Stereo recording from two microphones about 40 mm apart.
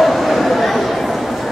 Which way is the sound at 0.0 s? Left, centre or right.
Centre.